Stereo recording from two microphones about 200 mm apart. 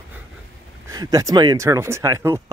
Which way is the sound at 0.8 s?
20° right (ahead or behind).